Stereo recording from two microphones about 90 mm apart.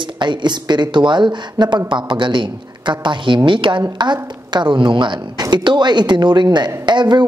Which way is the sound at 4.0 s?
55° right (ahead or behind).